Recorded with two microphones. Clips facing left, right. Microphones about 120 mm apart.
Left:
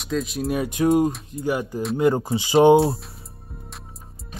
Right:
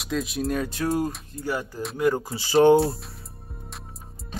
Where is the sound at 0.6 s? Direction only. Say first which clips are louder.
Left 9 dB; 20° left (ahead or behind).